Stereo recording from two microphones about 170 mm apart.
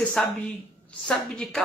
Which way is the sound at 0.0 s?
5° left (ahead or behind).